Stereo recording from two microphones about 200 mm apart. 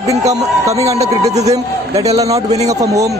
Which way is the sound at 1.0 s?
35° right (ahead or behind).